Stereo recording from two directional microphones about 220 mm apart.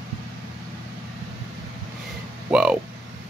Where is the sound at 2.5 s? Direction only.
Centre (ahead or behind).